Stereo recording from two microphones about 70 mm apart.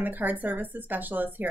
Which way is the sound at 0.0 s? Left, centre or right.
Right.